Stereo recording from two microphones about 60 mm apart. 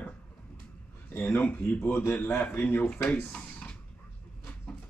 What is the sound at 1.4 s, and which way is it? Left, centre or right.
Speech, left.